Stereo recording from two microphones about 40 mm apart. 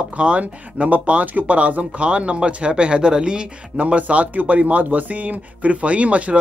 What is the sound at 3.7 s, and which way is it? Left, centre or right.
Speech, right.